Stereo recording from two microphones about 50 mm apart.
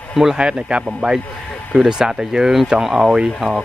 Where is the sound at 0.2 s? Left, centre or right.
Centre.